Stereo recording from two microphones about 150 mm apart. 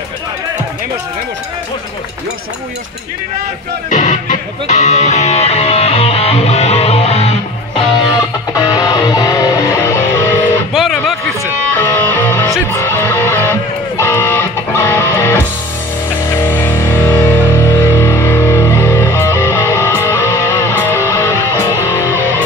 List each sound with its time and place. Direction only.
3.9 s music: 55° left (ahead or behind)
8.5 s music: 25° left (ahead or behind)
10.7 s music: 5° right (ahead or behind)
11.7 s music: 10° left (ahead or behind)